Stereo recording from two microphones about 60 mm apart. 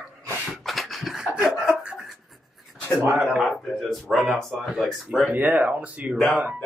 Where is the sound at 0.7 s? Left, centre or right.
Centre.